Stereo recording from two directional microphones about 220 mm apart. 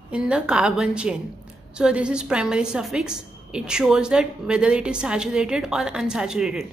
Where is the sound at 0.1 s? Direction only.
5° right (ahead or behind).